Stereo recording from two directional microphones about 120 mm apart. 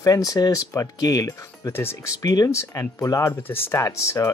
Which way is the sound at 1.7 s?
20° left (ahead or behind).